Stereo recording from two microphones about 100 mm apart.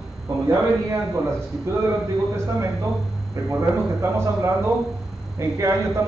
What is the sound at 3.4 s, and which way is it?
A man's voice, 35° right (ahead or behind).